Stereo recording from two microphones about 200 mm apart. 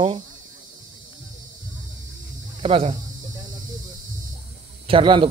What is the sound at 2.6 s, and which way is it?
Speech, 30° right (ahead or behind).